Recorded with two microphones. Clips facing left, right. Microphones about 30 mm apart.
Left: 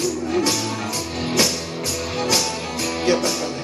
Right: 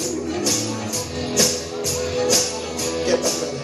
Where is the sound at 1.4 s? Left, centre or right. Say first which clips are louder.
Right 1 dB; left.